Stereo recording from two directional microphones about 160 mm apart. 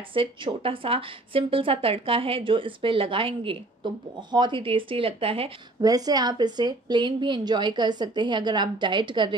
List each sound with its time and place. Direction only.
0.1 s a woman's voice: 35° right (ahead or behind)
5.8 s a woman's voice: 25° right (ahead or behind)